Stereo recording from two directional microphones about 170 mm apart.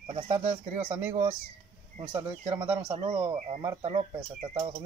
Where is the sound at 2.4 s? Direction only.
35° right (ahead or behind).